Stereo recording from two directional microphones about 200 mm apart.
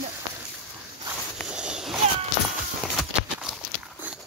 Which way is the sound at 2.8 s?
Centre (ahead or behind).